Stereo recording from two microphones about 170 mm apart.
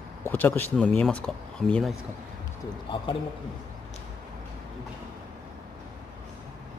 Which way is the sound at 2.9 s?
30° left (ahead or behind).